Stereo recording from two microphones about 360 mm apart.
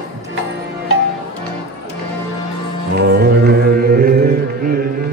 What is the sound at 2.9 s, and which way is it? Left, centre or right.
Music, right.